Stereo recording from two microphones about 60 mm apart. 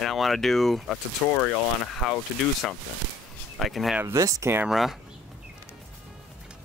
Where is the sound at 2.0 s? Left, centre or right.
Centre.